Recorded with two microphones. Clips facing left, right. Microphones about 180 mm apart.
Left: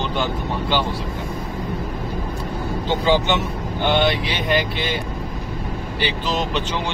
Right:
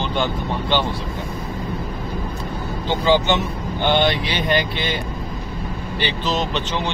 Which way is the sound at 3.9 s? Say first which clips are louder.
Right 1 dB; centre (ahead or behind).